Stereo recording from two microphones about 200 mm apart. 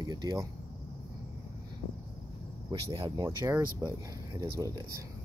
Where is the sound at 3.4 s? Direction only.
15° right (ahead or behind).